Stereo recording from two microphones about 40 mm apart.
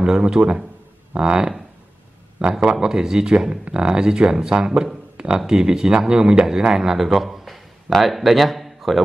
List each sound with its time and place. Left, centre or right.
0.0 s speech: right
2.5 s speech: centre
5.1 s a sound: right
5.5 s speech: centre
6.7 s speech: centre